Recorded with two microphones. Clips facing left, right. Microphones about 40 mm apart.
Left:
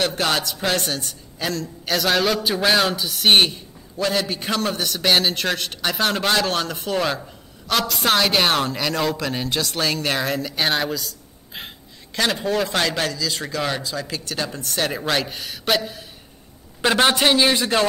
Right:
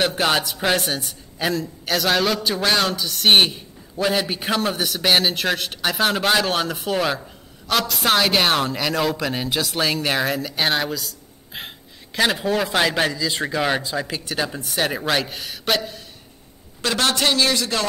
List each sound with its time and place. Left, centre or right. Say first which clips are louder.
0.0 s a man's voice: right 2 dB; centre
16.8 s a man's voice: left 3 dB; left